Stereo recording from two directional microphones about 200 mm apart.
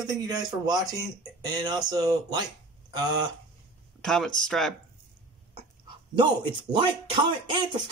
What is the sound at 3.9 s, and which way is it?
Speech, 5° left (ahead or behind).